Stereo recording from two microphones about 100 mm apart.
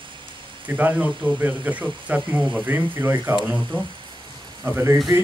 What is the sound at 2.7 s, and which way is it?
Speech, 25° right (ahead or behind).